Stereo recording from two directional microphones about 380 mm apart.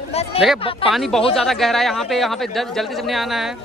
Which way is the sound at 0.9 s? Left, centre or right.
Centre.